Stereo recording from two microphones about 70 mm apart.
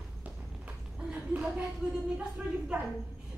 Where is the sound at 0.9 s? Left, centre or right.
Centre.